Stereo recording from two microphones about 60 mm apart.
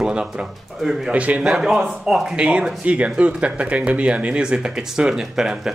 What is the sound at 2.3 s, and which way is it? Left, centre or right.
Speech, centre.